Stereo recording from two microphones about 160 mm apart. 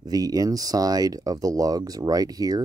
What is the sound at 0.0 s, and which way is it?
Speech, 25° right (ahead or behind).